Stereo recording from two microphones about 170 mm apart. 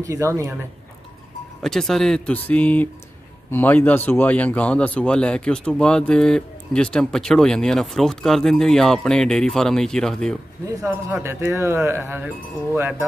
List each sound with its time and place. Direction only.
0.0 s speech: 20° right (ahead or behind)
1.6 s a man's voice: centre (ahead or behind)
10.7 s speech: 20° right (ahead or behind)